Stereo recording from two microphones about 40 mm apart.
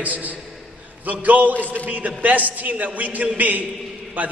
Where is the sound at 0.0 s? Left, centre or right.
Right.